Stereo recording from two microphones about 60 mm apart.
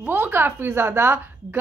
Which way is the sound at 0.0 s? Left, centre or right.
Right.